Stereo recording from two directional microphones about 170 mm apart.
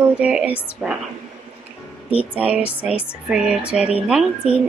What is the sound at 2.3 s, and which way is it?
A woman's voice, 10° right (ahead or behind).